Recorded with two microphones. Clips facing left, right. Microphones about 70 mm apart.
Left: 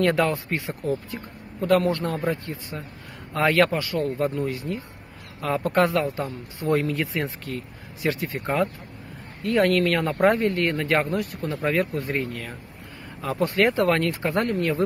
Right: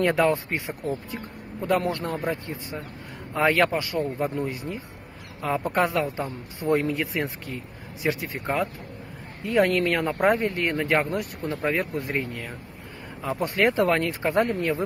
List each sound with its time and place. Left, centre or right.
0.0 s a man's voice: centre
6.7 s a man's voice: centre
8.4 s speech: centre
9.4 s a man's voice: centre